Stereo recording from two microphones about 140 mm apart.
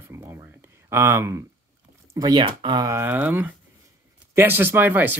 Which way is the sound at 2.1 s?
30° right (ahead or behind).